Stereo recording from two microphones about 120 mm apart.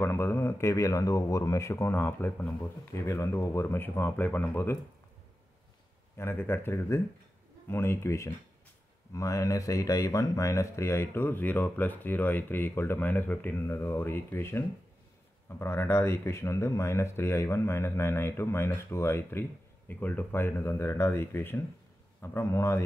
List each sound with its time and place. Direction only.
0.0 s speech: 20° left (ahead or behind)
6.1 s speech: 20° left (ahead or behind)
15.6 s speech: 20° left (ahead or behind)